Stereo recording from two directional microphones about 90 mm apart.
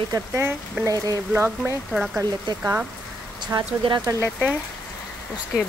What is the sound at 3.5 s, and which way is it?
Speech, 45° right (ahead or behind).